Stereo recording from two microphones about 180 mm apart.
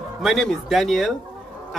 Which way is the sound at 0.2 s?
Centre (ahead or behind).